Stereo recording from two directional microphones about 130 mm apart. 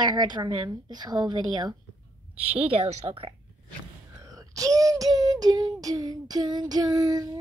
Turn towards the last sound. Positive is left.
turn(degrees=-25)  # may be behind; listen again after turning